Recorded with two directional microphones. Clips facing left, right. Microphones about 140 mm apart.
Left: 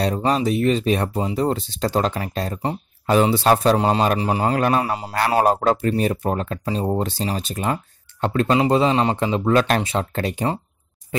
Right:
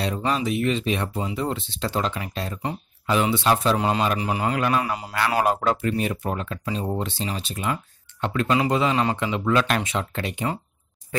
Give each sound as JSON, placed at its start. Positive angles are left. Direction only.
{"t": 0.0, "sound": "speech", "side_deg": 40}